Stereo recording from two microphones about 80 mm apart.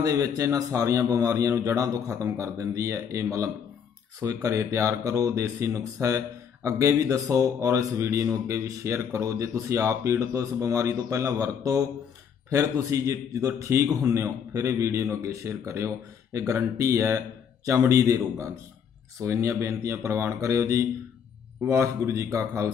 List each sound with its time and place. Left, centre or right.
0.0 s a man's voice: right